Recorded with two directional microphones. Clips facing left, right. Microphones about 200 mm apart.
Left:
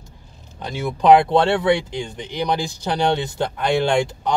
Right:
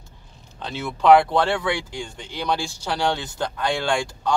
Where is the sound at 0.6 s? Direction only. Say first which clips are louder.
Left 3 dB; 15° left (ahead or behind).